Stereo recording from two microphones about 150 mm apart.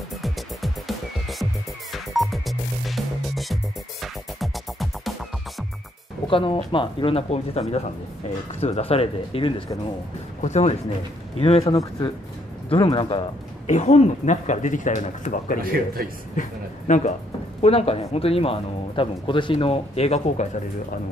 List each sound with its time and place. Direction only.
0.2 s music: centre (ahead or behind)
6.2 s speech: 35° left (ahead or behind)
13.7 s speech: 50° left (ahead or behind)
17.6 s speech: 40° left (ahead or behind)